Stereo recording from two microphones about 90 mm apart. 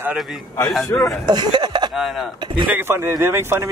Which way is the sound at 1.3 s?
55° right (ahead or behind).